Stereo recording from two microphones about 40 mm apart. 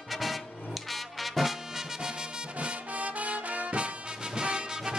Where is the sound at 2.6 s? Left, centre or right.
Right.